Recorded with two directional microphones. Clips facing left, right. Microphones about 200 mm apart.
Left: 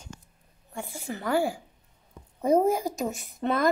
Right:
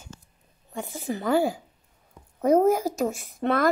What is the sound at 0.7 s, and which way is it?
Speech, 20° right (ahead or behind).